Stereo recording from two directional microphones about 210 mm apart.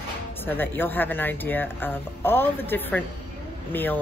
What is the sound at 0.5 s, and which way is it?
Speech, 10° left (ahead or behind).